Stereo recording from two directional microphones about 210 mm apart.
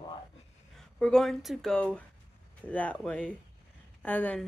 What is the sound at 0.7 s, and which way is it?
Speech, centre (ahead or behind).